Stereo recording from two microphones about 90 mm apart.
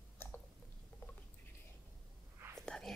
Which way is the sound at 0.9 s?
20° left (ahead or behind).